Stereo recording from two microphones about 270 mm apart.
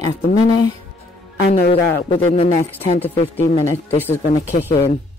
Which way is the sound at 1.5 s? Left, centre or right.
Left.